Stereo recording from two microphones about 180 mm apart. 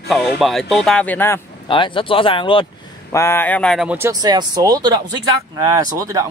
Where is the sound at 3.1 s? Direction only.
15° left (ahead or behind).